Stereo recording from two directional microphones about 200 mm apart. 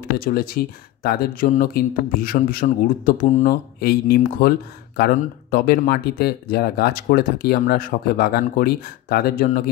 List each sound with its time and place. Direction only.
0.2 s speech: 45° left (ahead or behind)